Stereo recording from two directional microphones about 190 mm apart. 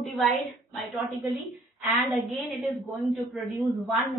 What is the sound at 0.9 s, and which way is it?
A woman's voice, centre (ahead or behind).